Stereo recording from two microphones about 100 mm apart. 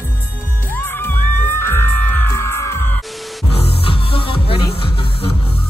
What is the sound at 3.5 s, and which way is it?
Music, 75° left (ahead or behind).